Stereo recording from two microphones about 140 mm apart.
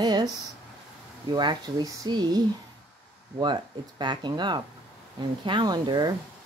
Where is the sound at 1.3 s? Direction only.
30° right (ahead or behind).